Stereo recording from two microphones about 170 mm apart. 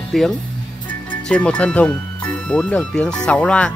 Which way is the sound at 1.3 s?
5° left (ahead or behind).